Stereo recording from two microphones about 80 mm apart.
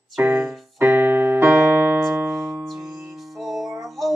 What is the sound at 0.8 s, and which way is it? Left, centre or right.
Keyboard, right.